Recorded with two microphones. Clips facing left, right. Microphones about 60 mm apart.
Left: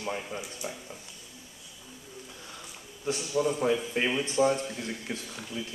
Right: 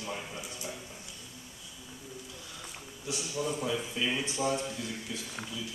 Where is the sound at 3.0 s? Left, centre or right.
Left.